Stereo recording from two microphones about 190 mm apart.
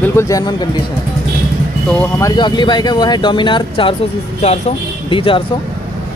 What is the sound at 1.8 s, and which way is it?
Speech, 10° left (ahead or behind).